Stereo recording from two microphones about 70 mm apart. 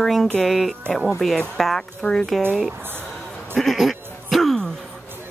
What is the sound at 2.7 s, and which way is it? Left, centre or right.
Speech, right.